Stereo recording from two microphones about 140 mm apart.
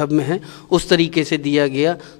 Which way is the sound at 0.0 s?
15° left (ahead or behind).